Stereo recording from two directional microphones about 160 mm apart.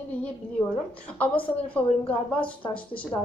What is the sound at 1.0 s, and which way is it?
A woman's voice, 10° left (ahead or behind).